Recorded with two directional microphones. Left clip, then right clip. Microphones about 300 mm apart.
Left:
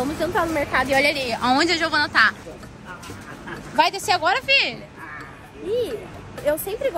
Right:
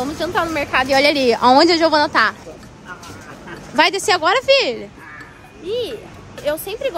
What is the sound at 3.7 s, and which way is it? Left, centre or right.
A woman's voice, right.